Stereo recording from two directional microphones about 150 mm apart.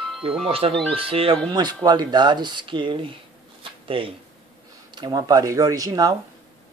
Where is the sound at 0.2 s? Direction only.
40° right (ahead or behind).